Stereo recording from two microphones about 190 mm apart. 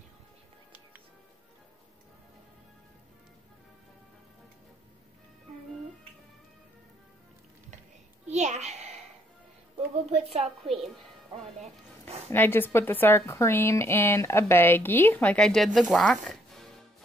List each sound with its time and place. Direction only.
8.3 s a sound: 35° right (ahead or behind)
10.3 s a woman's voice: centre (ahead or behind)
12.3 s speech: 10° left (ahead or behind)